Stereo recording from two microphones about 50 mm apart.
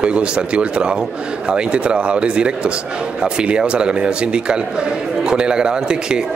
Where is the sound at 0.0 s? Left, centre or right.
Right.